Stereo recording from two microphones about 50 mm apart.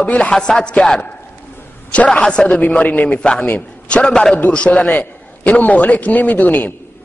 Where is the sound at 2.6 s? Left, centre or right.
Left.